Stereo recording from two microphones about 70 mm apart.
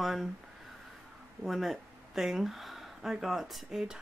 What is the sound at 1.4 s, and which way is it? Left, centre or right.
Speech, centre.